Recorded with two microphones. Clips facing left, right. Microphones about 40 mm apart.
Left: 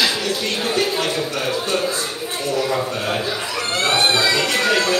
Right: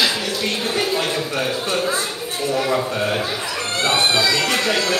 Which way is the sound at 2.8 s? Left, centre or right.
Centre.